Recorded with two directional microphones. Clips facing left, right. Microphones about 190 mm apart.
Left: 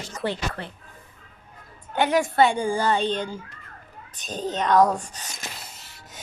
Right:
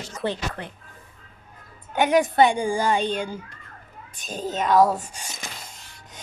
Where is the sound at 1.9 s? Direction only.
15° right (ahead or behind).